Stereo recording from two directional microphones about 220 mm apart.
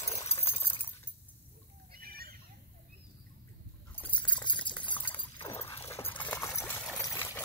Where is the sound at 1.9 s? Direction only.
45° right (ahead or behind).